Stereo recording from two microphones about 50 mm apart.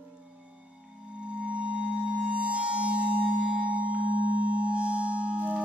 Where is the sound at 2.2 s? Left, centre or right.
Right.